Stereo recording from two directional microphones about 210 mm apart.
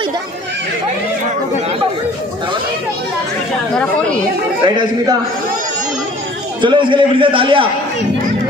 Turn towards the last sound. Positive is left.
turn(degrees=-25)  # may be behind; listen again after turning